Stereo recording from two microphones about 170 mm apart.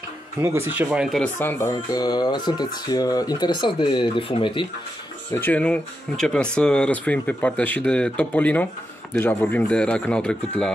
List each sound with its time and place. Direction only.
0.4 s speech: 15° right (ahead or behind)
1.4 s speech: 10° left (ahead or behind)
1.9 s speech: 25° left (ahead or behind)
5.3 s speech: 10° left (ahead or behind)